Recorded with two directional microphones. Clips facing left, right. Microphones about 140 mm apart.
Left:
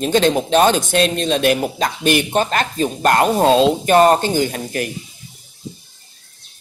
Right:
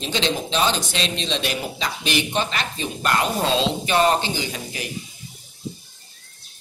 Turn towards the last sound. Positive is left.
turn(degrees=50)  # may be behind; listen again after turning